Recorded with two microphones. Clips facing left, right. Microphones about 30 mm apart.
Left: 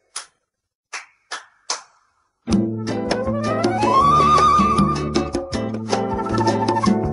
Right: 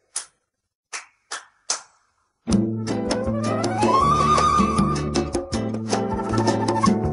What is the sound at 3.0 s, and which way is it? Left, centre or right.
Music, centre.